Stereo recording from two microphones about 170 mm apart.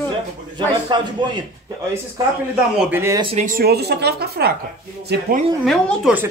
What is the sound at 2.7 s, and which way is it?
Speech, 10° right (ahead or behind).